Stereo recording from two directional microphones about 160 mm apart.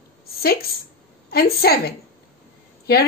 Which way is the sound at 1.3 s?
70° left (ahead or behind).